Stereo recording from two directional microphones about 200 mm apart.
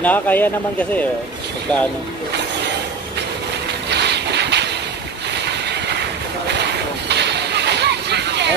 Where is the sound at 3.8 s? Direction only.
55° right (ahead or behind).